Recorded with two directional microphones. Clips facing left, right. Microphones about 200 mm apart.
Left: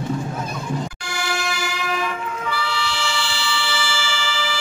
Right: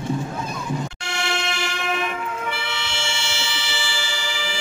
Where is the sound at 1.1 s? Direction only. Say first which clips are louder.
Right 1 dB; 25° right (ahead or behind).